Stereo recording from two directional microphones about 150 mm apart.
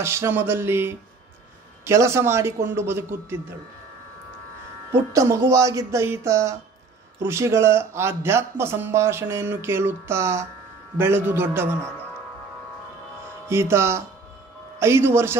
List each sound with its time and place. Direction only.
0.0 s speech: 15° right (ahead or behind)
4.9 s speech: 20° right (ahead or behind)
13.5 s speech: 15° right (ahead or behind)